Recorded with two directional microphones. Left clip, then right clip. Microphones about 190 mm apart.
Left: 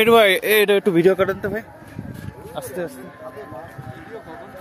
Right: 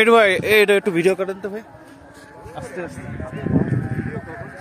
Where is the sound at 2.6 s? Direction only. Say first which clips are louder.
Left 3 dB; 75° left (ahead or behind).